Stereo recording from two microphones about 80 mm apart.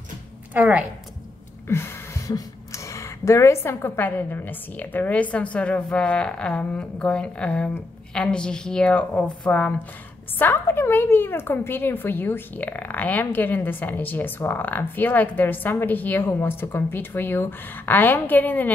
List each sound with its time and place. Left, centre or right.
0.6 s a woman's voice: centre
1.7 s a woman's voice: left; by 9.8 s centre
10.4 s speech: left